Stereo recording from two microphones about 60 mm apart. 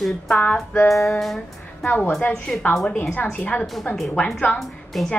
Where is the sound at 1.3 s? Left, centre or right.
Left.